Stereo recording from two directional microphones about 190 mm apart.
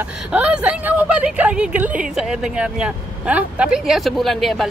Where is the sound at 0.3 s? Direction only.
5° right (ahead or behind).